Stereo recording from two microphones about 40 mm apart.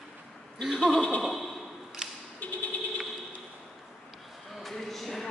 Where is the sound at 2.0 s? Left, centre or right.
Centre.